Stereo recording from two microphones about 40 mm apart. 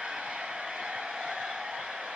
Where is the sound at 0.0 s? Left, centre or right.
Centre.